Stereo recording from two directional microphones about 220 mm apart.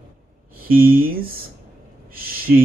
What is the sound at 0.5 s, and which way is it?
Speech, 40° right (ahead or behind).